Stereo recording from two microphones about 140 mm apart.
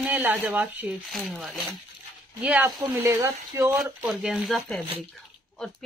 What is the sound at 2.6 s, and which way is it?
Speech, 20° right (ahead or behind).